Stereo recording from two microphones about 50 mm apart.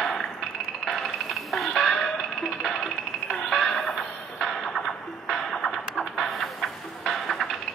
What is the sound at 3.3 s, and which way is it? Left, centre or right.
Music, centre.